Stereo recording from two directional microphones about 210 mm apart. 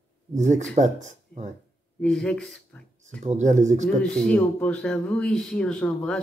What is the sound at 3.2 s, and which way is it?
Speech, 35° right (ahead or behind).